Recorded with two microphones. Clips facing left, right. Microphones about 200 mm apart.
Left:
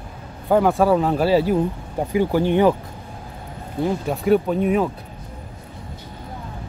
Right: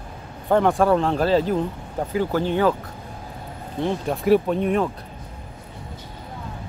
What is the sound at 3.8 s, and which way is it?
Speech, 5° left (ahead or behind).